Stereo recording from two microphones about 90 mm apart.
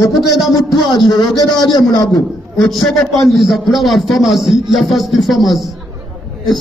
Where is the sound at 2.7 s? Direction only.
5° left (ahead or behind).